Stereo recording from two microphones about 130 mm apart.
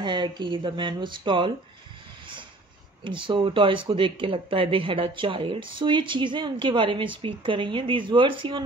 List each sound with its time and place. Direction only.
0.0 s speech: 35° right (ahead or behind)
3.0 s speech: 40° right (ahead or behind)